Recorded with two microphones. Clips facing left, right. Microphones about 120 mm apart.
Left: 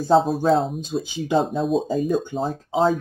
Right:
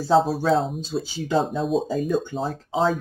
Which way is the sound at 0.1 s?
Centre (ahead or behind).